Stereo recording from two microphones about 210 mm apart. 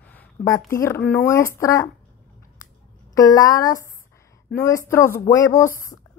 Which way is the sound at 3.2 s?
15° left (ahead or behind).